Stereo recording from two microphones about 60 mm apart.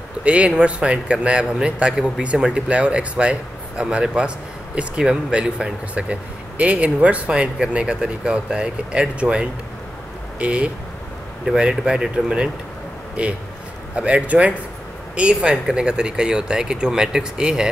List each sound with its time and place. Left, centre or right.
0.2 s a man's voice: centre
11.4 s a man's voice: centre